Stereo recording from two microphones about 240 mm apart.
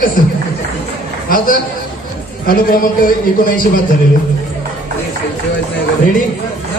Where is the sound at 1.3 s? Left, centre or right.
Left.